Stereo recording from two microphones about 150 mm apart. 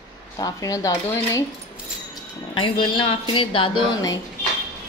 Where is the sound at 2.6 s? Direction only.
35° left (ahead or behind).